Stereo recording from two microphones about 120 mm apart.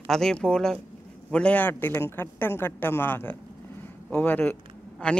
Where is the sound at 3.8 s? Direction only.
15° left (ahead or behind).